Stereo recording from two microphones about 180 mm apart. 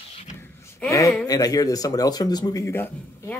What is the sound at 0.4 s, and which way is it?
Gasp, 15° left (ahead or behind).